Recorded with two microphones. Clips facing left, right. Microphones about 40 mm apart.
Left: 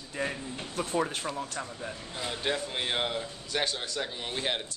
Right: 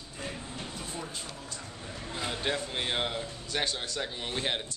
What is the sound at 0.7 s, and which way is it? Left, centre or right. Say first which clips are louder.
Speech: left 9 dB; left.